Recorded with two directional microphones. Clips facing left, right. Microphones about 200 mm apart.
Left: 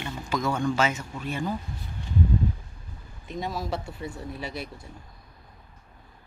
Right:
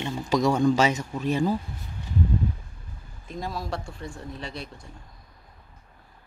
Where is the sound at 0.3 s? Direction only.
40° right (ahead or behind).